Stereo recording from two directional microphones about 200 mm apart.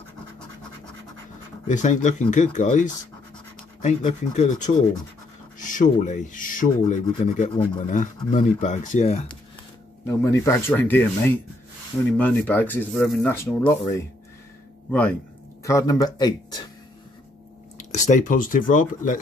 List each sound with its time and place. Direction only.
1.7 s speech: 40° left (ahead or behind)
10.0 s speech: 15° left (ahead or behind)
17.7 s speech: 35° left (ahead or behind)